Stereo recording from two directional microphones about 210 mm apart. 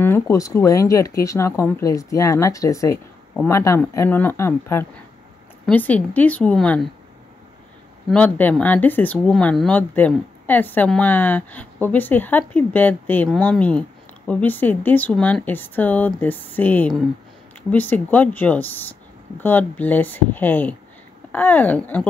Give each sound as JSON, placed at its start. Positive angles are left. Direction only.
{"t": 0.0, "sound": "speech", "side_deg": 15}
{"t": 8.1, "sound": "speech", "side_deg": 5}